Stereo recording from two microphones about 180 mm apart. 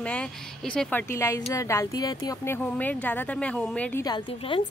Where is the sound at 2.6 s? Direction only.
10° left (ahead or behind).